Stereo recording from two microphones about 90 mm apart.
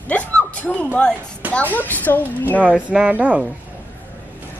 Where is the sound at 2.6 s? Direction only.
15° right (ahead or behind).